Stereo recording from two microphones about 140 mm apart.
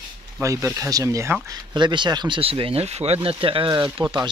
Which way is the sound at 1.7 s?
30° right (ahead or behind).